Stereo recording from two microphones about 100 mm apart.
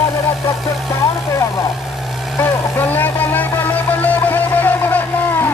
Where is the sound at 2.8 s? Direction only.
20° left (ahead or behind).